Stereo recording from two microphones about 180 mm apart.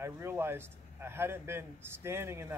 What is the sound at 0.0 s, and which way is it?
A man's voice, 15° right (ahead or behind).